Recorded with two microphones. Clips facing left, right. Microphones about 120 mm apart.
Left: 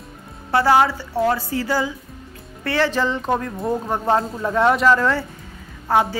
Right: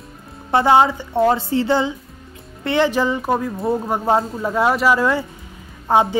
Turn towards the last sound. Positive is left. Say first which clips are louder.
# right 3 dB
turn(degrees=-20)  # may be behind; listen again after turning